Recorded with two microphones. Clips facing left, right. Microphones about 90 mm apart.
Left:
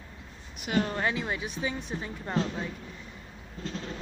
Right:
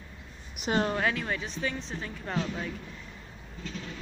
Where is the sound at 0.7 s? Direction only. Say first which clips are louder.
Right 1 dB; 30° right (ahead or behind).